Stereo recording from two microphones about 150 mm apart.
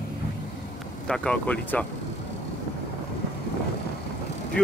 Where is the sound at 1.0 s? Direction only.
5° left (ahead or behind).